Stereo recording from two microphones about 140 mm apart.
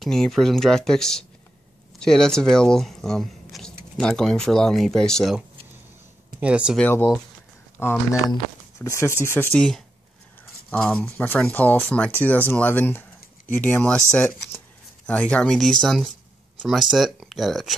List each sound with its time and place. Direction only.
0.0 s speech: centre (ahead or behind)
6.4 s speech: 10° right (ahead or behind)
6.8 s speech: 15° left (ahead or behind); by 17.7 s centre (ahead or behind)